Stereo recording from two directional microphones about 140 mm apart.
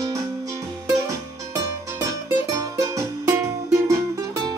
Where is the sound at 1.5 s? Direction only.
20° right (ahead or behind).